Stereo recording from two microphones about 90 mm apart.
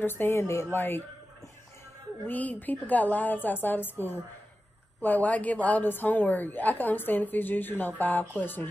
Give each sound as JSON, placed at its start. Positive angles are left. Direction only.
{"t": 0.0, "sound": "a woman's voice", "side_deg": 25}
{"t": 2.2, "sound": "a woman's voice", "side_deg": 15}
{"t": 5.0, "sound": "a woman's voice", "side_deg": 20}